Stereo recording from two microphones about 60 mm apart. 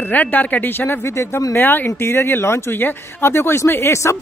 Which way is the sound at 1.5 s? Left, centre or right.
Left.